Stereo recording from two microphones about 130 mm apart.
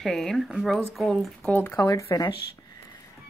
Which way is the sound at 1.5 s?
15° left (ahead or behind).